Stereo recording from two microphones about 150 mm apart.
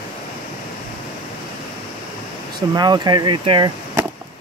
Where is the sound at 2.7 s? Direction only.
25° right (ahead or behind).